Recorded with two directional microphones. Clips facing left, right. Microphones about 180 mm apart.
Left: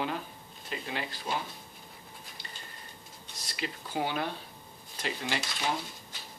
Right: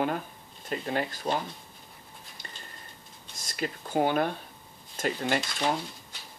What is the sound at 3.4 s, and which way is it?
Speech, 45° right (ahead or behind).